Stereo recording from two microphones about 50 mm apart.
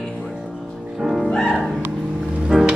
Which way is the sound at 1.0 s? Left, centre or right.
Centre.